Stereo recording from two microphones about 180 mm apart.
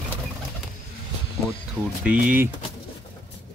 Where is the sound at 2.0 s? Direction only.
5° right (ahead or behind).